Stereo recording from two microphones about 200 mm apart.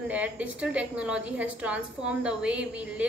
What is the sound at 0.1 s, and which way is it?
A woman's voice, 5° right (ahead or behind).